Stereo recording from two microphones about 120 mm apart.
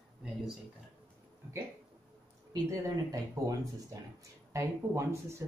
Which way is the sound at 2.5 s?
30° right (ahead or behind).